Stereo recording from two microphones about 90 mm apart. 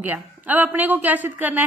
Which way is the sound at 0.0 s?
20° right (ahead or behind).